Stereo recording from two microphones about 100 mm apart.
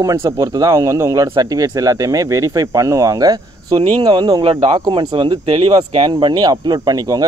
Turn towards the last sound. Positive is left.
turn(degrees=-40)  # may be behind; listen again after turning